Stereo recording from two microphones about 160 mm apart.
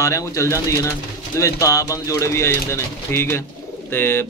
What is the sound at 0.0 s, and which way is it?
A man's voice, 20° left (ahead or behind).